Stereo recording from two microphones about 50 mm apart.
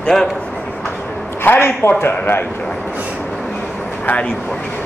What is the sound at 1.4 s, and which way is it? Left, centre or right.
A man's voice, left.